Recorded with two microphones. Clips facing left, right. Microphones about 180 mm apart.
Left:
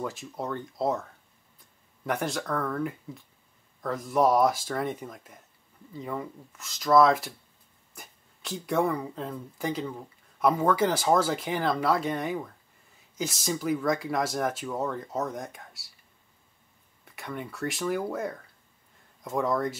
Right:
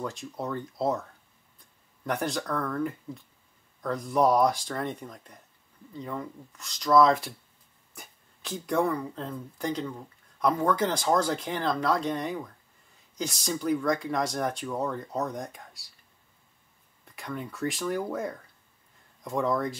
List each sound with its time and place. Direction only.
0.0 s speech: 5° left (ahead or behind)
2.0 s speech: centre (ahead or behind)
17.0 s speech: centre (ahead or behind)